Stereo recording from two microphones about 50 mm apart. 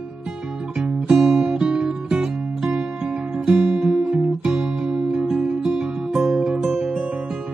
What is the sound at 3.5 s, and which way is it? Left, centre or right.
Guitar, centre.